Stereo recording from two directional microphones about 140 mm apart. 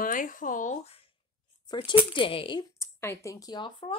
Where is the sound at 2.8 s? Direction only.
20° left (ahead or behind).